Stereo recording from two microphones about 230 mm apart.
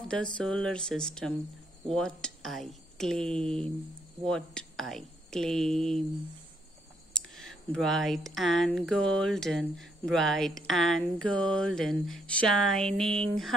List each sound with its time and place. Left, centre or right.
0.1 s speech: centre
3.3 s a sound: right
4.2 s speech: centre
7.2 s speech: centre